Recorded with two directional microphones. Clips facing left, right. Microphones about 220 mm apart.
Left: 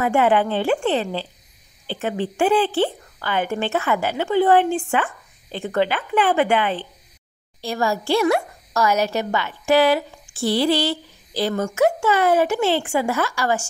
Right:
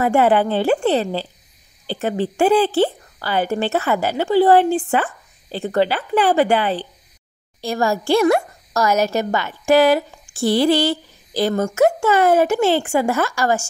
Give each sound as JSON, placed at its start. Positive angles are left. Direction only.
{"t": 0.0, "sound": "a woman's voice", "side_deg": -40}